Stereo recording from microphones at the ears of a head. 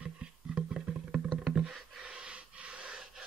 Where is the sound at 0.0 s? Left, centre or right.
Right.